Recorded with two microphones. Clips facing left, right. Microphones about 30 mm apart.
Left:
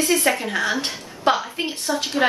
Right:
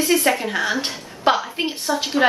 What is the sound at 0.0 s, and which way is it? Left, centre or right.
A woman's voice, centre.